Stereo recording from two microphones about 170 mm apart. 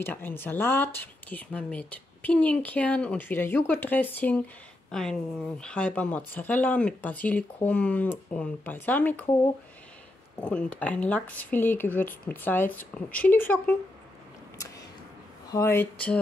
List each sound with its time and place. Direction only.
0.0 s speech: 10° left (ahead or behind)
10.3 s speech: 5° left (ahead or behind)
15.5 s speech: 15° left (ahead or behind)